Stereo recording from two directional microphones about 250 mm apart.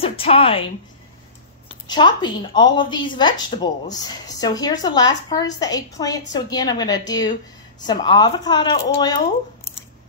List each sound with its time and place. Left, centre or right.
0.0 s a woman's voice: left
1.9 s a woman's voice: centre